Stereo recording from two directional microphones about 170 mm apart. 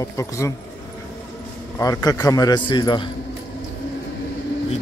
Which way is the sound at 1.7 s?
20° left (ahead or behind).